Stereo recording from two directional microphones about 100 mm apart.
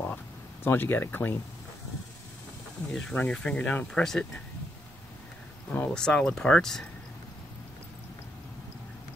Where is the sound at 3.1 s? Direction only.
10° left (ahead or behind).